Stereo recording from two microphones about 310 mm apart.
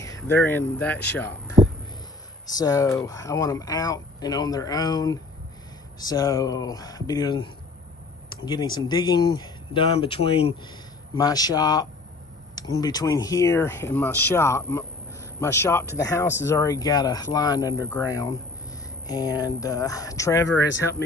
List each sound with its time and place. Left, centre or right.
0.0 s speech: centre
1.6 s a sound: centre
2.4 s speech: centre
8.5 s speech: centre
20.4 s speech: left